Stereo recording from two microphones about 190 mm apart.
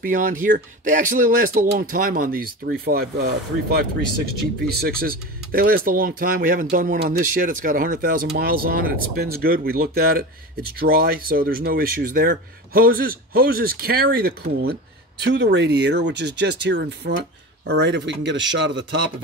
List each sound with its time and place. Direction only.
0.0 s speech: 45° right (ahead or behind)
4.7 s speech: 50° right (ahead or behind)
15.2 s speech: 65° right (ahead or behind)